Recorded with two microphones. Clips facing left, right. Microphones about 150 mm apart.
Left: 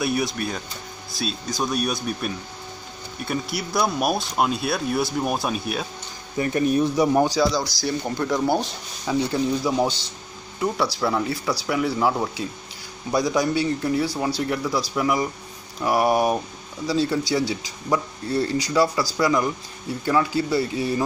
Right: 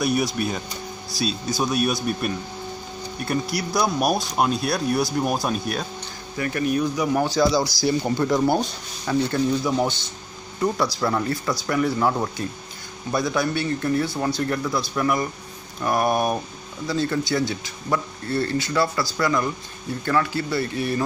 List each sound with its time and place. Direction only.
0.0 s speech: centre (ahead or behind)
3.3 s speech: centre (ahead or behind)
6.3 s speech: 25° left (ahead or behind)
7.8 s speech: 5° right (ahead or behind)
9.0 s speech: 10° left (ahead or behind)